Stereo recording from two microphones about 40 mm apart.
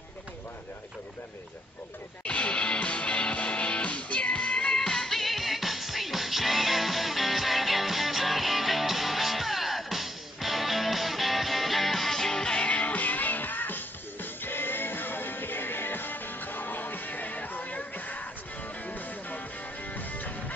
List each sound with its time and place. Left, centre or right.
2.2 s music: left
4.7 s music: centre
12.5 s music: left